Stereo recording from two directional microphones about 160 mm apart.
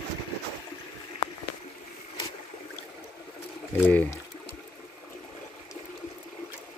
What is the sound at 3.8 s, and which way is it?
Speech, 15° left (ahead or behind).